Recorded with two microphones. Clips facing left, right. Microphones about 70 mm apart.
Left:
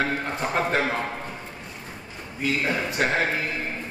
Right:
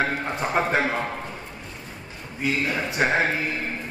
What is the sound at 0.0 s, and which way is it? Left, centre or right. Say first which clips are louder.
Speech: right 1 dB; centre.